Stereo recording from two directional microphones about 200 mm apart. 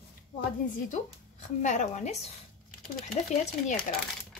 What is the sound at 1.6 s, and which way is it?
Speech, 35° left (ahead or behind).